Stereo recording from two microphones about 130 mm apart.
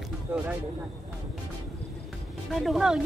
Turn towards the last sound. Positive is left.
turn(degrees=-5)  # may be behind; listen again after turning